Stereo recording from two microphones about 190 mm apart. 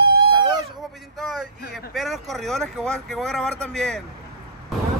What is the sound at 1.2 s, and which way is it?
Speech, centre (ahead or behind).